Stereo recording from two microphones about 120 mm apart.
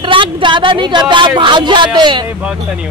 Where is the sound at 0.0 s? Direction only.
45° right (ahead or behind).